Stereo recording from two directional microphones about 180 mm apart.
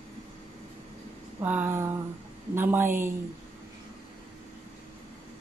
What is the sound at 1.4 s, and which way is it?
Speech, 10° right (ahead or behind).